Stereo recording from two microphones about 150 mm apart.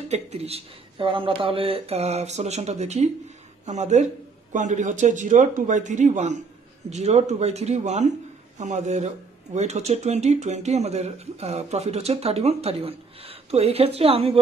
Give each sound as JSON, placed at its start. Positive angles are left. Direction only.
{"t": 0.1, "sound": "speech", "side_deg": -45}